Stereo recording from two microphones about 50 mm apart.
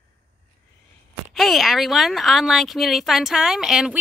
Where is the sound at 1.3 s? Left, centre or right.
Centre.